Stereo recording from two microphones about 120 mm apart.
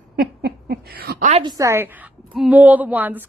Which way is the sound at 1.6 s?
20° right (ahead or behind).